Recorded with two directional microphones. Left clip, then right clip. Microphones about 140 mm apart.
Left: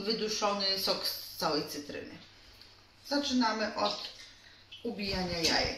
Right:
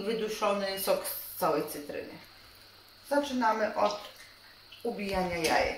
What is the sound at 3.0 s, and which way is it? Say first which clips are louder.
Speech: right 3 dB; 15° right (ahead or behind).